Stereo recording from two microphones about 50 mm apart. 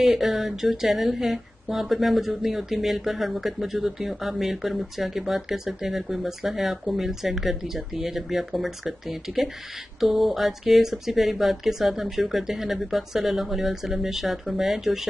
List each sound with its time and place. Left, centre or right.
0.0 s speech: centre